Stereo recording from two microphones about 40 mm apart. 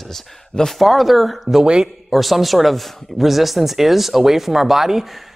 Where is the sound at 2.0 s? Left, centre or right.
Centre.